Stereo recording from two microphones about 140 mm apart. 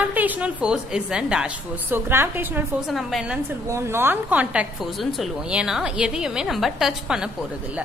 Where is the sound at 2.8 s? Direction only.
Centre (ahead or behind).